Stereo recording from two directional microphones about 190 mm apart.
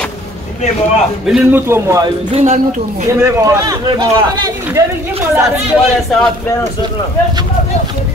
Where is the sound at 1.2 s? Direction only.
5° right (ahead or behind).